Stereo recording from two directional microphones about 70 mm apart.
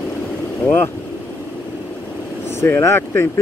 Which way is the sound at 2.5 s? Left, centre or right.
Left.